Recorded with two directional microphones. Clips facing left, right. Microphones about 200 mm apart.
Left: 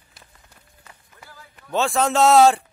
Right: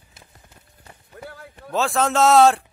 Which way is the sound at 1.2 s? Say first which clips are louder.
Right 9 dB; 60° right (ahead or behind).